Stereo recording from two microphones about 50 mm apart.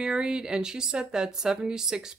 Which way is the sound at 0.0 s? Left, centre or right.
Centre.